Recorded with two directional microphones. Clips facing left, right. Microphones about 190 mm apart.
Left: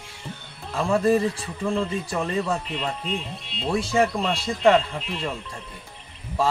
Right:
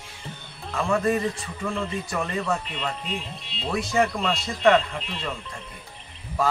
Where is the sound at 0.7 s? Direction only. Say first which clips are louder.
Left 3 dB; 30° left (ahead or behind).